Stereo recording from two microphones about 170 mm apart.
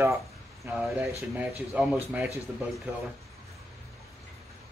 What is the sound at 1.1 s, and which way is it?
Speech, 5° right (ahead or behind).